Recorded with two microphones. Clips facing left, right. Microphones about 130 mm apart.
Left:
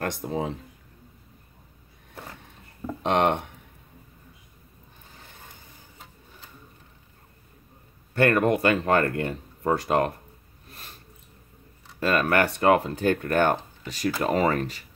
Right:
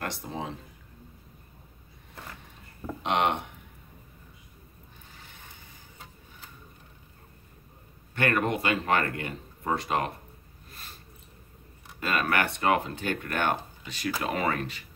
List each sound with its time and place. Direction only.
0.0 s speech: 45° left (ahead or behind)
3.0 s speech: 45° left (ahead or behind)
8.1 s speech: 40° left (ahead or behind)
12.2 s speech: 40° left (ahead or behind)